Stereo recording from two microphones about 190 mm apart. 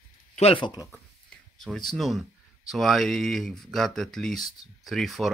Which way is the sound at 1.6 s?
Centre (ahead or behind).